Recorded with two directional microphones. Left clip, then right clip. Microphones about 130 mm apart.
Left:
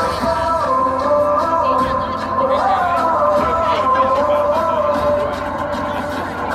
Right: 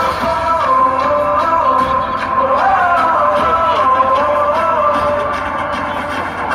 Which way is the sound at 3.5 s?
25° left (ahead or behind).